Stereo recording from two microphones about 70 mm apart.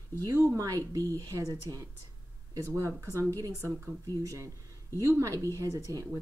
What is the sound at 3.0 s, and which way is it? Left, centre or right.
Speech, right.